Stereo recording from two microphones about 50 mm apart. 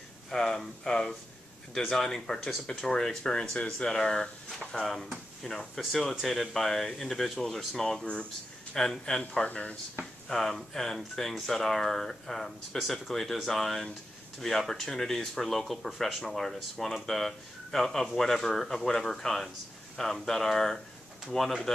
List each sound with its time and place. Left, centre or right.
0.3 s speech: centre
4.7 s speech: centre; by 9.8 s left
10.2 s speech: centre